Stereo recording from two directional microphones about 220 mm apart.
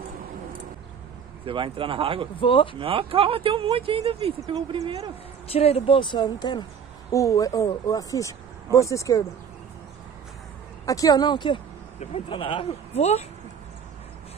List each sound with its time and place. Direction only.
1.4 s speech: 25° right (ahead or behind)
2.4 s speech: 25° left (ahead or behind)
2.8 s speech: 25° right (ahead or behind)
5.5 s speech: 25° left (ahead or behind)
10.9 s speech: 15° left (ahead or behind)